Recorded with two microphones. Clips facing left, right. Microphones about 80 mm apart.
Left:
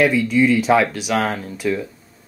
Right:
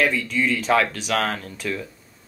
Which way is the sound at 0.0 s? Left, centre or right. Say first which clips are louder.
Left 6 dB; centre.